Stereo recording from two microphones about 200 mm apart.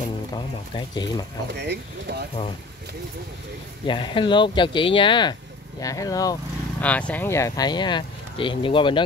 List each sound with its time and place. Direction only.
0.3 s speech: 20° left (ahead or behind)
1.5 s speech: 55° right (ahead or behind)
3.8 s speech: 25° left (ahead or behind)
6.8 s speech: 5° left (ahead or behind); by 9.0 s 25° left (ahead or behind)